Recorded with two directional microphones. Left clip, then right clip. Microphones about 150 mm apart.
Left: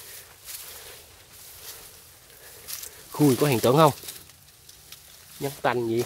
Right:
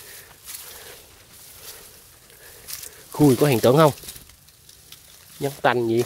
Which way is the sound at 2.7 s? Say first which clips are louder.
Right 1 dB; 15° right (ahead or behind).